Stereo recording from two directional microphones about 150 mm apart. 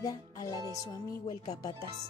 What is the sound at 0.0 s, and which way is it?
Music, 25° left (ahead or behind).